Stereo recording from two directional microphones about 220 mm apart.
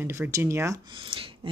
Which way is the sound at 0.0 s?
10° right (ahead or behind).